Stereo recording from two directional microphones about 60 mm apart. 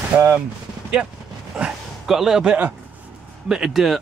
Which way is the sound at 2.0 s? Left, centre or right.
Centre.